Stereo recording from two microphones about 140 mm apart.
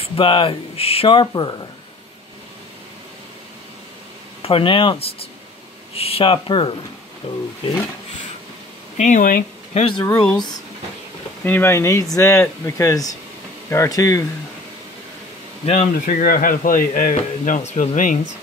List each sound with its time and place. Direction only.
0.0 s speech: 40° left (ahead or behind)
4.4 s speech: 40° left (ahead or behind)
8.9 s speech: 60° left (ahead or behind)
9.8 s speech: 40° left (ahead or behind)
11.4 s speech: 15° left (ahead or behind)
15.6 s speech: 55° left (ahead or behind)
16.1 s speech: 75° left (ahead or behind)